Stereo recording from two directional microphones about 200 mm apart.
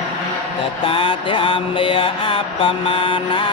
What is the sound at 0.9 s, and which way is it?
Mantra, 25° left (ahead or behind).